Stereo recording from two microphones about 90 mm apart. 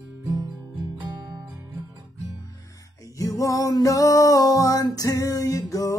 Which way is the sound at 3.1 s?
40° left (ahead or behind).